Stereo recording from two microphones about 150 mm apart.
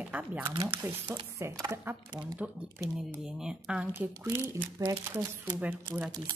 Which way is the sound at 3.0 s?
5° right (ahead or behind).